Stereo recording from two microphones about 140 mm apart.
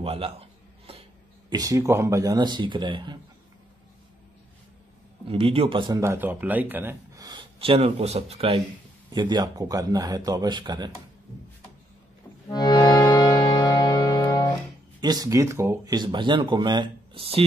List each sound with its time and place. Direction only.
0.0 s speech: 45° right (ahead or behind)
1.5 s speech: 25° right (ahead or behind)
5.3 s speech: 40° right (ahead or behind)
5.9 s speech: 15° right (ahead or behind)
7.5 s speech: 45° right (ahead or behind)
9.1 s speech: 30° right (ahead or behind)
12.4 s accordion: 30° left (ahead or behind)
13.0 s music: 25° left (ahead or behind)
15.0 s speech: 30° right (ahead or behind)